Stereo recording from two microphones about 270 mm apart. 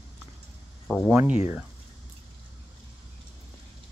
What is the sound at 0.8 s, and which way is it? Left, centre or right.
Speech, centre.